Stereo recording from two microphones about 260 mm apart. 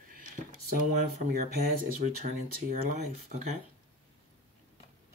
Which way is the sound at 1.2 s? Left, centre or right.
Right.